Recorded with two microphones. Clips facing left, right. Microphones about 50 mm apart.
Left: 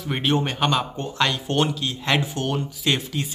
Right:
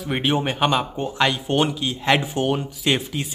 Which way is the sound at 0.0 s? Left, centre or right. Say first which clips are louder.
Right 1 dB; centre.